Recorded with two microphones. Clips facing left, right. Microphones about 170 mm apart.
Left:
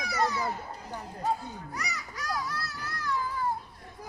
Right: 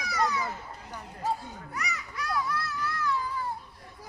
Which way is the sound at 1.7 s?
35° left (ahead or behind).